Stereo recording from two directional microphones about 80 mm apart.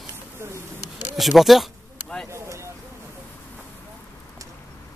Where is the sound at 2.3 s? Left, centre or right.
Right.